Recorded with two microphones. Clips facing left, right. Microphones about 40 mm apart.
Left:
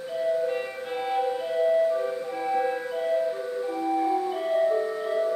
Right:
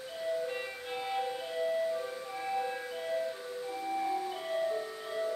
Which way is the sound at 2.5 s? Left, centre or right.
Left.